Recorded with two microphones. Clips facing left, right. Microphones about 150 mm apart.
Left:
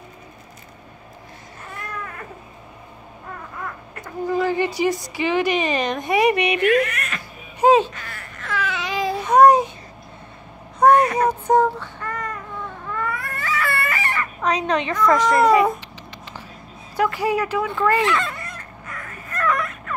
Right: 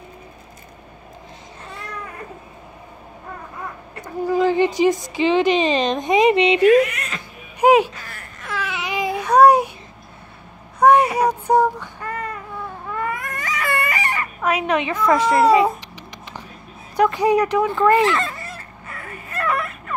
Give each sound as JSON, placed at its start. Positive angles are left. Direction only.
{"t": 4.3, "sound": "speech", "side_deg": -20}
{"t": 8.4, "sound": "babbling", "side_deg": -20}
{"t": 10.8, "sound": "child singing", "side_deg": -10}
{"t": 12.9, "sound": "baby cry", "side_deg": -15}
{"t": 15.3, "sound": "speech", "side_deg": -25}
{"t": 16.9, "sound": "speech", "side_deg": -20}
{"t": 18.1, "sound": "fowl", "side_deg": 0}